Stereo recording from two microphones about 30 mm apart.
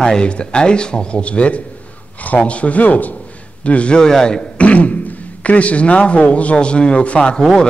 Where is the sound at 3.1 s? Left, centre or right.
Left.